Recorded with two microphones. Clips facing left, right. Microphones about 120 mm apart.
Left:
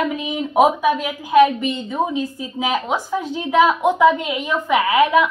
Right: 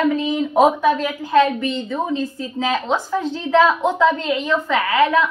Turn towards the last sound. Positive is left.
turn(degrees=15)  # may be behind; listen again after turning